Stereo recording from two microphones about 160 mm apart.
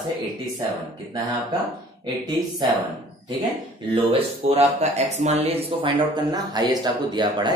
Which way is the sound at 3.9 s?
35° right (ahead or behind).